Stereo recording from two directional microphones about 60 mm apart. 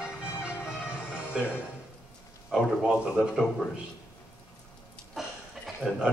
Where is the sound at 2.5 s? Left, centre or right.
Centre.